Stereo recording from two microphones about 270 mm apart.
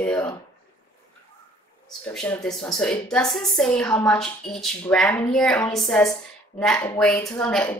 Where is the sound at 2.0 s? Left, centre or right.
Centre.